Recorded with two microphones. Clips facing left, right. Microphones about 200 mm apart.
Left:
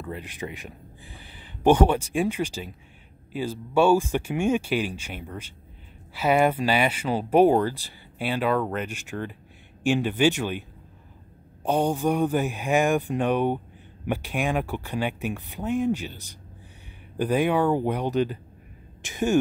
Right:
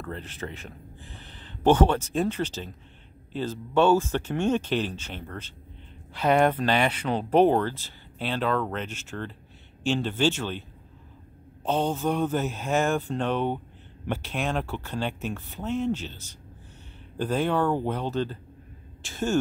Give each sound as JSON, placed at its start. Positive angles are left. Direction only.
{"t": 0.0, "sound": "speech", "side_deg": 10}
{"t": 11.6, "sound": "speech", "side_deg": 15}